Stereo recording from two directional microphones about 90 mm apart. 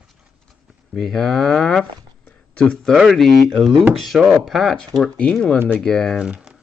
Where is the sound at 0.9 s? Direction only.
5° left (ahead or behind).